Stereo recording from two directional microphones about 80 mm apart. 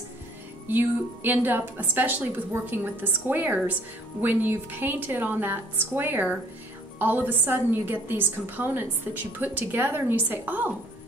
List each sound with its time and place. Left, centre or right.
0.7 s a woman's voice: right